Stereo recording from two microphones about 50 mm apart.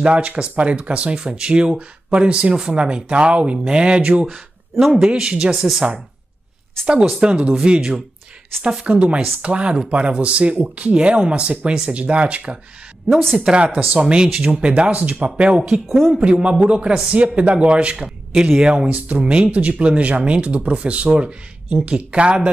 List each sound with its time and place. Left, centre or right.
0.0 s speech: right
1.2 s speech: centre
4.3 s speech: centre
4.9 s speech: centre
6.9 s speech: centre
15.6 s speech: centre
16.2 s speech: right